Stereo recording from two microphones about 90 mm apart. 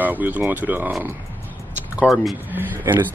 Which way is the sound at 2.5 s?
20° right (ahead or behind).